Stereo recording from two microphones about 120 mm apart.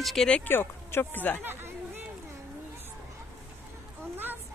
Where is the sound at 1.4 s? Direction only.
15° right (ahead or behind).